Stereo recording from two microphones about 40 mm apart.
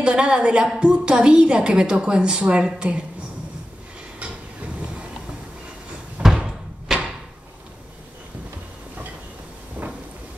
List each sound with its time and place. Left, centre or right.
0.0 s a woman's voice: right
4.2 s train: right
6.2 s slam: centre
9.8 s a sound: right